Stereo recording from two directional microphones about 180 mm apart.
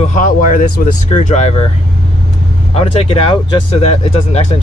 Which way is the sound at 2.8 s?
30° left (ahead or behind).